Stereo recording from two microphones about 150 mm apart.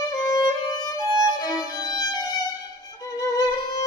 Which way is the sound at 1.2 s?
25° left (ahead or behind).